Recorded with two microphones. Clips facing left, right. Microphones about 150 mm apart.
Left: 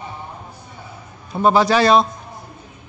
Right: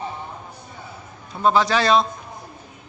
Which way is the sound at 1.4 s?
10° left (ahead or behind).